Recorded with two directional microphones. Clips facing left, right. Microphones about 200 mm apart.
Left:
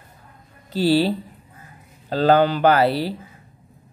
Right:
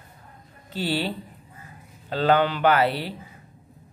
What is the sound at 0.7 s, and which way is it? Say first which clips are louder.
Speech: left 9 dB; 35° left (ahead or behind).